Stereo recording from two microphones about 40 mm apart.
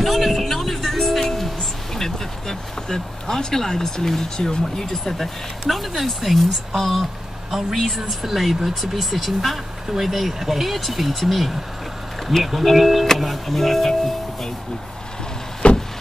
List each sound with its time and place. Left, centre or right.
0.0 s music: centre
2.0 s speech: centre
15.6 s vehicle: left